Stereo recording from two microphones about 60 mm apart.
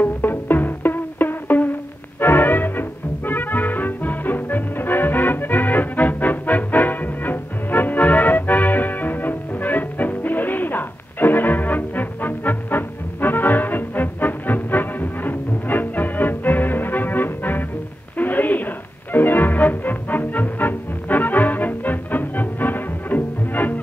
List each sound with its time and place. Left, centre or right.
0.0 s music: left
18.1 s a sound: left
19.1 s music: left